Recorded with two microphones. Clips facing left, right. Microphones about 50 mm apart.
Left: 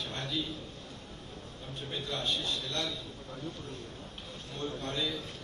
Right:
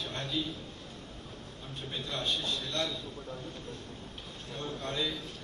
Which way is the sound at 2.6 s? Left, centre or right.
Right.